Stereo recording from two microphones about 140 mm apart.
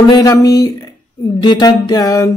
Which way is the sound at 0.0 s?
30° left (ahead or behind).